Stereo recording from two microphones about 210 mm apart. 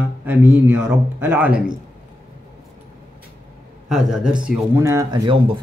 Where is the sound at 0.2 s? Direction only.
10° right (ahead or behind).